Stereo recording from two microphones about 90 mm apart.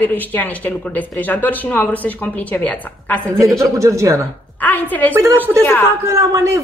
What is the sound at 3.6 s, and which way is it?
Speech, 35° right (ahead or behind).